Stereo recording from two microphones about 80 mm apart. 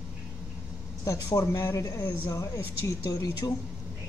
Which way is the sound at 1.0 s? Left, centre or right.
Left.